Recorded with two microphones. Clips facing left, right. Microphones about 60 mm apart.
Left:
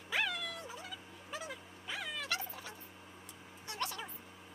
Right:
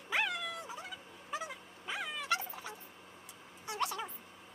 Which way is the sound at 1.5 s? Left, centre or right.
Centre.